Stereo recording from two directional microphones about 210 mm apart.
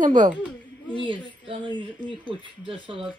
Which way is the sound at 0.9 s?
25° right (ahead or behind).